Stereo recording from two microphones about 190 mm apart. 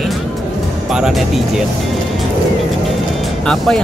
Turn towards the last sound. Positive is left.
turn(degrees=5)  # may be behind; listen again after turning